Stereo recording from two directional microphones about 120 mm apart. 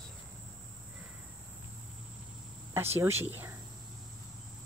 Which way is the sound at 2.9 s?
20° right (ahead or behind).